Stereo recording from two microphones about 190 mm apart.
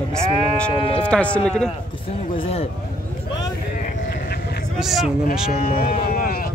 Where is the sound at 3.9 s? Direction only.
50° left (ahead or behind).